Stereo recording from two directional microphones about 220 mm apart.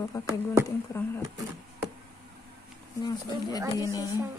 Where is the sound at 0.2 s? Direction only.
15° left (ahead or behind).